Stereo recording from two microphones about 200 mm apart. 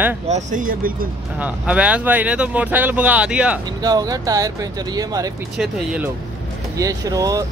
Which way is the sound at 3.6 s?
20° right (ahead or behind).